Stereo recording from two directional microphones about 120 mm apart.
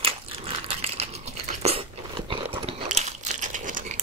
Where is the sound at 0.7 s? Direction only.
60° right (ahead or behind).